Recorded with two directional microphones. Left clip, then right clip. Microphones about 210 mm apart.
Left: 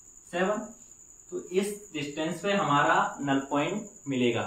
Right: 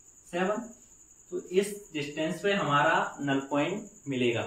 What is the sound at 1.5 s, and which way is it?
Speech, 10° left (ahead or behind).